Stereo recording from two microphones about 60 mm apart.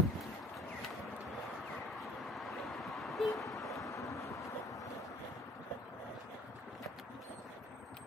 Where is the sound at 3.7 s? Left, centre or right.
Left.